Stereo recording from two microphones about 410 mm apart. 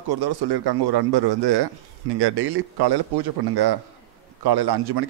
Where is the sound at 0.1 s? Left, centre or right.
Right.